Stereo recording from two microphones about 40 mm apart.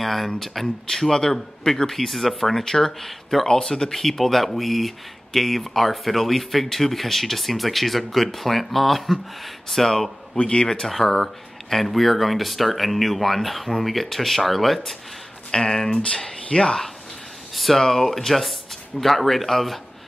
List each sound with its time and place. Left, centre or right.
0.0 s a sound: centre
0.4 s speech: centre
3.4 s speech: centre
10.3 s a man's voice: left
10.9 s speech: centre
15.5 s a man's voice: centre
17.7 s speech: centre